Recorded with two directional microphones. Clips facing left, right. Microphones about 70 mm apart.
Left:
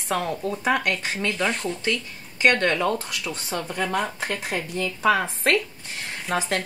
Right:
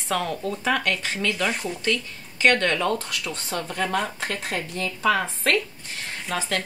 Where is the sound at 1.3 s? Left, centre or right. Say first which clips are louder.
Left 1 dB; centre.